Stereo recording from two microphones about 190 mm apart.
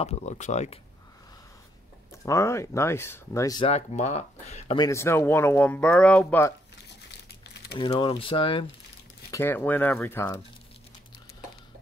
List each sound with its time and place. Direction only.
0.0 s speech: 35° left (ahead or behind)
2.2 s speech: 15° left (ahead or behind)
3.6 s speech: 35° left (ahead or behind)
4.7 s speech: 15° left (ahead or behind)
7.7 s speech: 25° left (ahead or behind)
9.3 s speech: 10° left (ahead or behind)